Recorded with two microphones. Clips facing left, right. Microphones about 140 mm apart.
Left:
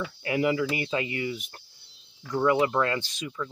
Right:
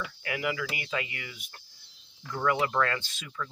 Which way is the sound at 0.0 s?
30° left (ahead or behind).